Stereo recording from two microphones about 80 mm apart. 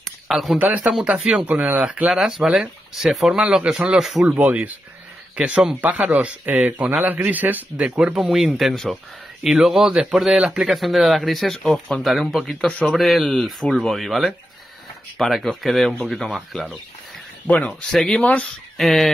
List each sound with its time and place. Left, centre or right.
0.3 s speech: centre
0.6 s speech: centre
4.2 s a man's voice: centre
7.8 s speech: centre
12.5 s speech: centre
12.9 s speech: centre
17.6 s speech: centre
18.2 s speech: centre
18.8 s speech: centre